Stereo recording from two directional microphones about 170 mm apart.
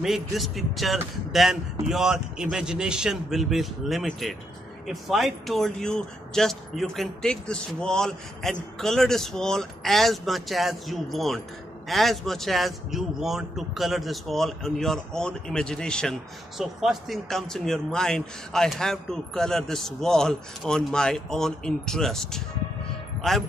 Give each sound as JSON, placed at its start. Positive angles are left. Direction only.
{"t": 0.0, "sound": "a man's voice", "side_deg": 0}